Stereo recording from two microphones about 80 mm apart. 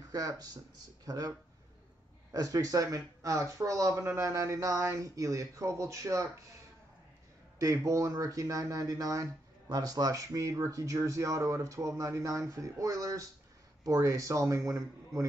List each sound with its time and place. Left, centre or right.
0.1 s speech: right
2.3 s speech: right
7.5 s speech: right